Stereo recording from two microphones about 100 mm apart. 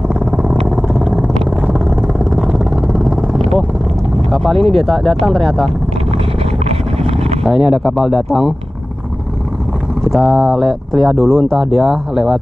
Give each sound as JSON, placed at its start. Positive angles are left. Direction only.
{"t": 0.2, "sound": "vehicle", "side_deg": 5}
{"t": 4.3, "sound": "speech", "side_deg": 0}
{"t": 6.6, "sound": "vehicle", "side_deg": -80}
{"t": 7.4, "sound": "speech", "side_deg": -5}
{"t": 10.0, "sound": "speech", "side_deg": 0}